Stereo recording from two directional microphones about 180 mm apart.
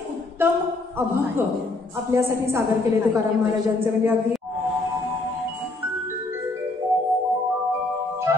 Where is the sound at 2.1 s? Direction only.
15° right (ahead or behind).